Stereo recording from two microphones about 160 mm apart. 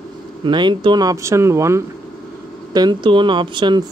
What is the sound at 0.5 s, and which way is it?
Speech, 30° right (ahead or behind).